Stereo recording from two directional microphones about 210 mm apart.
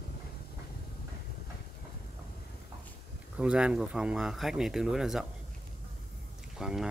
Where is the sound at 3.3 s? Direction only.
5° right (ahead or behind).